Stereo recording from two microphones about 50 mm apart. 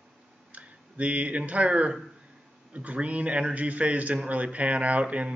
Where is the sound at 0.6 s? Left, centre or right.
Right.